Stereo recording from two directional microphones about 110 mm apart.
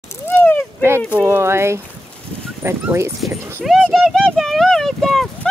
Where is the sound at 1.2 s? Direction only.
25° right (ahead or behind).